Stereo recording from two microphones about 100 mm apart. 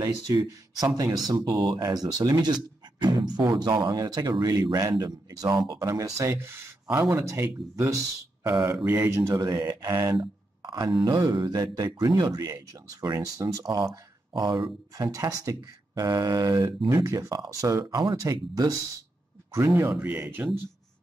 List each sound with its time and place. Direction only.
0.0 s speech: 35° right (ahead or behind)
9.0 s speech: 30° right (ahead or behind)
10.2 s a sound: 40° right (ahead or behind)
11.1 s speech: 45° right (ahead or behind)
14.4 s speech: 50° right (ahead or behind); by 20.6 s 20° right (ahead or behind)